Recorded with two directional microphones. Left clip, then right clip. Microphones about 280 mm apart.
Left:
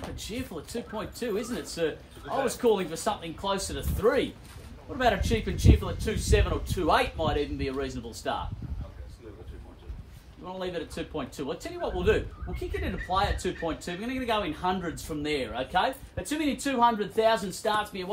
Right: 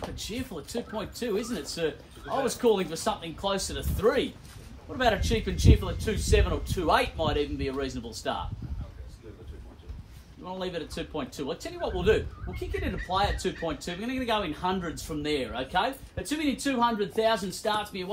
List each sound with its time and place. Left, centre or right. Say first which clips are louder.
0.2 s speech: right 1 dB; centre
10.4 s speech: even; centre